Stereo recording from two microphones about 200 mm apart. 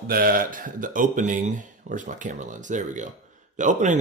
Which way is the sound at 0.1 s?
45° right (ahead or behind).